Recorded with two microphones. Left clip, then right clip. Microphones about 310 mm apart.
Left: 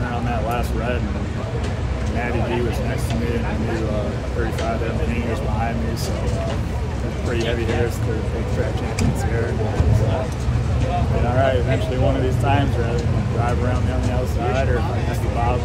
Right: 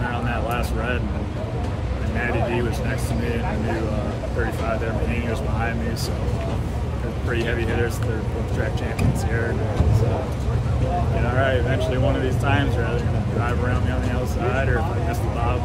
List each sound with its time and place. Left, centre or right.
11.3 s speech: centre